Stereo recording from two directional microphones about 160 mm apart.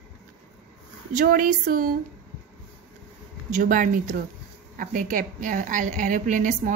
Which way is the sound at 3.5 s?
55° right (ahead or behind).